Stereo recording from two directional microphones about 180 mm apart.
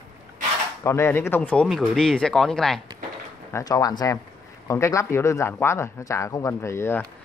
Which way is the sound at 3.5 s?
20° left (ahead or behind).